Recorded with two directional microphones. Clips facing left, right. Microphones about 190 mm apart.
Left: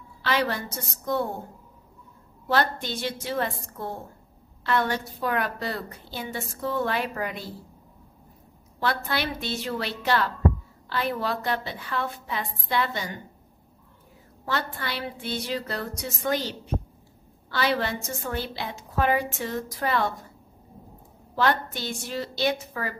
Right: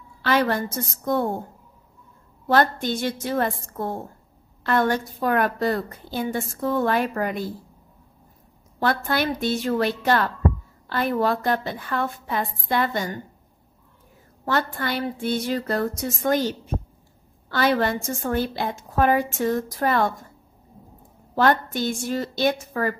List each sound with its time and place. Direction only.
0.2 s a woman's voice: 50° right (ahead or behind)
2.4 s a woman's voice: 50° right (ahead or behind)
8.7 s a woman's voice: 50° right (ahead or behind)
14.4 s a woman's voice: 50° right (ahead or behind)
21.4 s a woman's voice: 50° right (ahead or behind)